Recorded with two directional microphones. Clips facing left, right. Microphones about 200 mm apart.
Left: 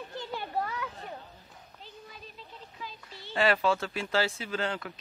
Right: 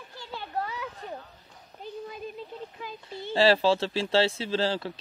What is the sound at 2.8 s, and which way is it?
Speech, 55° right (ahead or behind).